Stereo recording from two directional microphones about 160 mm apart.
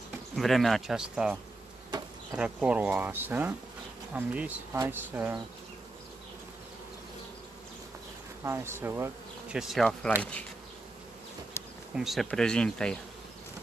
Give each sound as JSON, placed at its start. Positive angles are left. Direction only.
{"t": 0.4, "sound": "speech", "side_deg": 0}
{"t": 8.5, "sound": "speech", "side_deg": -15}
{"t": 9.6, "sound": "speech", "side_deg": 0}
{"t": 11.6, "sound": "bee", "side_deg": 15}
{"t": 11.9, "sound": "speech", "side_deg": 0}